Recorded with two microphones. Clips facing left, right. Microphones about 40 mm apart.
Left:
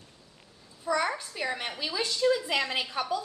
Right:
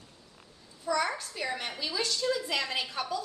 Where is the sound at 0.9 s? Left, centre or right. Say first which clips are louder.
Left 1 dB; centre.